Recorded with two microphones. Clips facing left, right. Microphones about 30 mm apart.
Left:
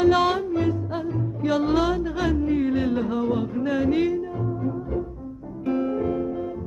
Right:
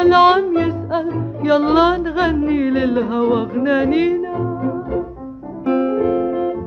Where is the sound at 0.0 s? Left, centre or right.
Right.